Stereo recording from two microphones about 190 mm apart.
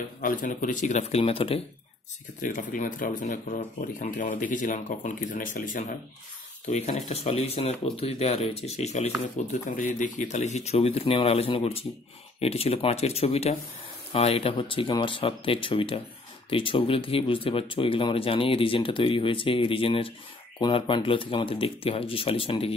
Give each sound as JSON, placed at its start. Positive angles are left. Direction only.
{"t": 0.2, "sound": "speech", "side_deg": 45}
{"t": 2.4, "sound": "speech", "side_deg": 45}